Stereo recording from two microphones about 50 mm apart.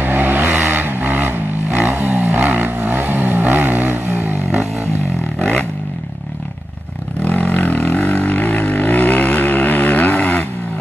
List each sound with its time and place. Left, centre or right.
0.0 s vehicle: right
5.4 s a sound: left
7.2 s vehicle: left